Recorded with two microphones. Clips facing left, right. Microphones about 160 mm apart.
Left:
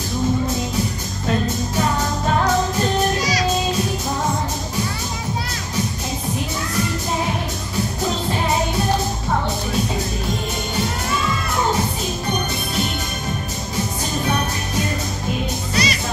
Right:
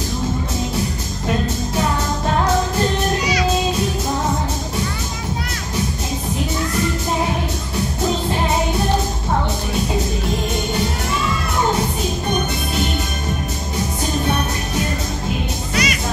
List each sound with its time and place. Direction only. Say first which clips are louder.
15.7 s music: right 1 dB; 35° left (ahead or behind)